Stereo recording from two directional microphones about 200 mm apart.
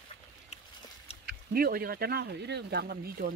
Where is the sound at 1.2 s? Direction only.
50° right (ahead or behind).